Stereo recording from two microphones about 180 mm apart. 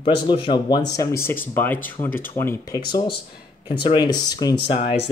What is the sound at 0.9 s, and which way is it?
Speech, 15° left (ahead or behind).